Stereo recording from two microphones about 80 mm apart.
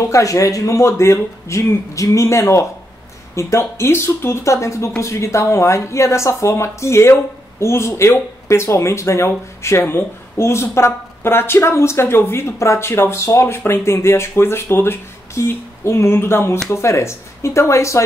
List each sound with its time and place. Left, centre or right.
0.0 s speech: left